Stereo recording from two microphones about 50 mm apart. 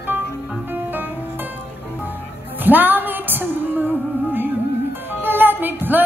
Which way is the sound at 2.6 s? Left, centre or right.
Right.